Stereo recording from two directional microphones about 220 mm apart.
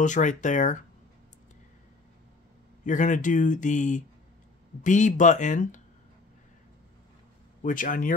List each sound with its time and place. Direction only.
0.0 s speech: 35° left (ahead or behind)
2.8 s speech: 35° left (ahead or behind)
7.6 s speech: 35° left (ahead or behind)